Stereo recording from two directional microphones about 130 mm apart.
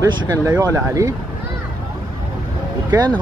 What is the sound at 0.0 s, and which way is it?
Speech, 25° right (ahead or behind).